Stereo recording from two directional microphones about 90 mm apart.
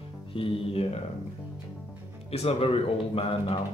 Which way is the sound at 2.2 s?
90° left.